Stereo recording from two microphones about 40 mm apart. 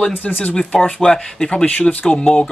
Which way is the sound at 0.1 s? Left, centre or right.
Left.